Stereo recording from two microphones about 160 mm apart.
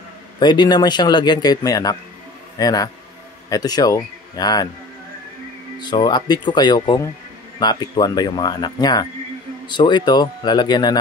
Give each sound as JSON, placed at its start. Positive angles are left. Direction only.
{"t": 0.4, "sound": "a man's voice", "side_deg": 25}
{"t": 5.8, "sound": "a man's voice", "side_deg": 30}